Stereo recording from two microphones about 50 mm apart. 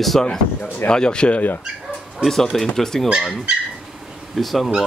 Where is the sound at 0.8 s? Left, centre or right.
Centre.